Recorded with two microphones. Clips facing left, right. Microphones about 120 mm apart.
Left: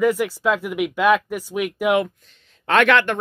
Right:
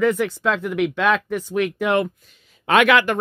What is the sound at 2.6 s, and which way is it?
Speech, 5° right (ahead or behind).